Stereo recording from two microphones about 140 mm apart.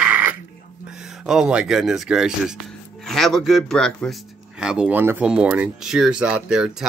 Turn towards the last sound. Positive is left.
turn(degrees=-5)  # may be behind; listen again after turning